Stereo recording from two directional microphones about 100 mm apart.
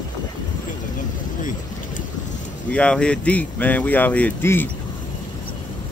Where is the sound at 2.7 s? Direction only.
10° left (ahead or behind).